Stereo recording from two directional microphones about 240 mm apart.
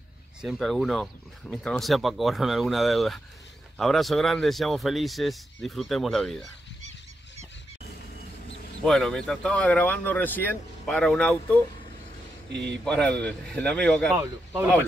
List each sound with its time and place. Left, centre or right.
0.4 s speech: centre
8.8 s speech: centre
12.5 s speech: right
12.8 s speech: centre
14.1 s speech: centre